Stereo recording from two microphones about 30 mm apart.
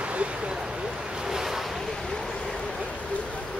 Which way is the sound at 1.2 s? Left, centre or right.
Centre.